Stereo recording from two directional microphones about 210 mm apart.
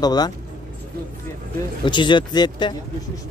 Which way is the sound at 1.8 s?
20° left (ahead or behind).